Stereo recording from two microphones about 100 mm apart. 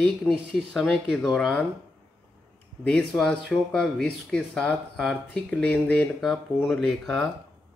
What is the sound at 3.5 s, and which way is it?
Speech, 5° left (ahead or behind).